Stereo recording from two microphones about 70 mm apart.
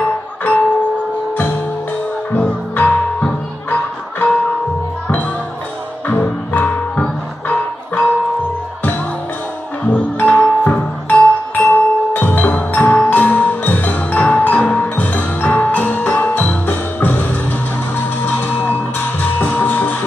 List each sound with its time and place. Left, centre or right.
0.4 s music: left
2.3 s music: left
6.0 s music: left
9.8 s music: centre